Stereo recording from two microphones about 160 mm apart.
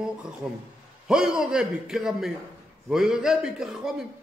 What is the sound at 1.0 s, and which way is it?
A man's voice, 5° right (ahead or behind).